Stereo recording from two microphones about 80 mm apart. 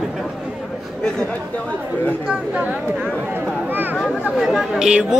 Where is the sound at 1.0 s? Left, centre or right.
Centre.